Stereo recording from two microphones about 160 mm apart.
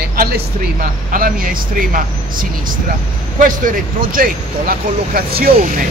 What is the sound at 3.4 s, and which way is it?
Speech, 60° right (ahead or behind).